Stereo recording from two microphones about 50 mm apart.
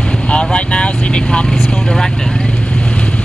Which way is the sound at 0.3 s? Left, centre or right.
Left.